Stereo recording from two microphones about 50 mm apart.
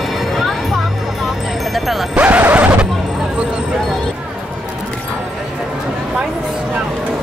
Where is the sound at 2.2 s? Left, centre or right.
Right.